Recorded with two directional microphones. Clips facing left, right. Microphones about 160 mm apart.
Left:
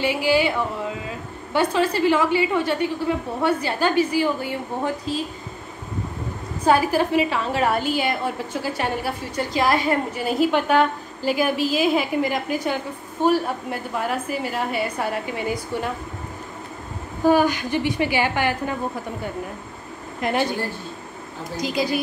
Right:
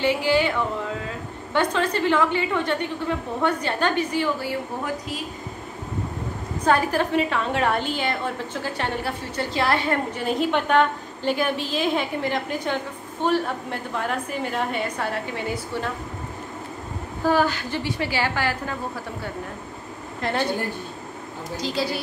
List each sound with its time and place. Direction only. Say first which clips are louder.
0.0 s a woman's voice: left 1 dB; 10° left (ahead or behind); by 5.2 s 30° left (ahead or behind)
6.6 s a woman's voice: left 3 dB; 10° left (ahead or behind)
17.2 s a woman's voice: left 4 dB; 15° left (ahead or behind)
20.2 s speech: left 3 dB; 15° left (ahead or behind)
21.5 s a woman's voice: left 3 dB; 15° left (ahead or behind)